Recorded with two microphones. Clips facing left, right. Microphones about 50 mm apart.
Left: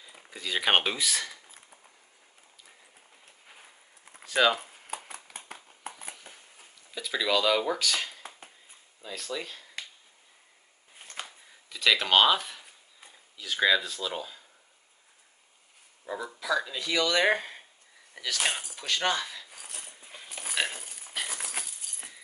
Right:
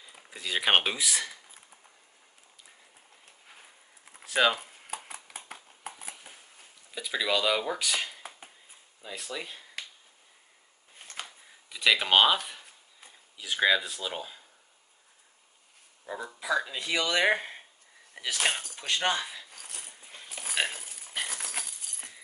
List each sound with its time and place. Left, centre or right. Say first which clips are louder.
0.0 s speech: left 1 dB; centre
3.4 s a sound: even; centre
9.0 s speech: left 2 dB; centre
11.0 s a sound: left 1 dB; centre
11.7 s speech: even; centre
16.3 s speech: right 1 dB; centre
19.5 s dog: left 1 dB; centre